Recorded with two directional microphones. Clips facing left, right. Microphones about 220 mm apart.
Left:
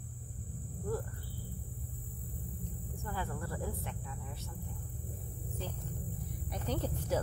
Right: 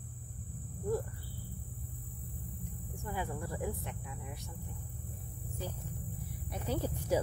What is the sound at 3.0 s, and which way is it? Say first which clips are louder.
Cricket: right 2 dB; 15° right (ahead or behind).